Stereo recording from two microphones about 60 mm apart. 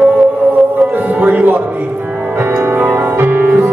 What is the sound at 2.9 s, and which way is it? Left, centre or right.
Music, right.